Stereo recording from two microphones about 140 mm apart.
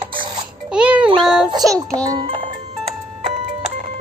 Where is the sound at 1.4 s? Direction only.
30° right (ahead or behind).